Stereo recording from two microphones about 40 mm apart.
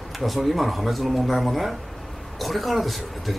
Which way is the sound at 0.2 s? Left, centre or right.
Centre.